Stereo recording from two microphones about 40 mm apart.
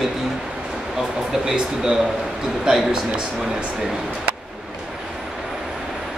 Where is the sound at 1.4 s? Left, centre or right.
Centre.